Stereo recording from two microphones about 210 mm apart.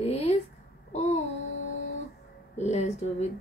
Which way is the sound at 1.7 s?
30° left (ahead or behind).